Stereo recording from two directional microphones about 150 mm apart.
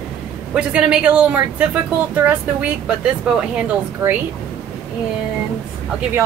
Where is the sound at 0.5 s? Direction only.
5° right (ahead or behind).